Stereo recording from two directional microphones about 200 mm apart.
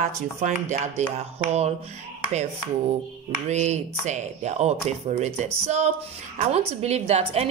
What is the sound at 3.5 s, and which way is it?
A woman's voice, 35° right (ahead or behind).